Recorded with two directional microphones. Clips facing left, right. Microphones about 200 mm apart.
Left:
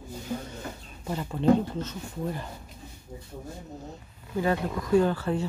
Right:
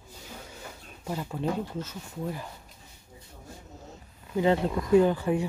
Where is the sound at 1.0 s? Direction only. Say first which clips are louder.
Left 7 dB; 5° right (ahead or behind).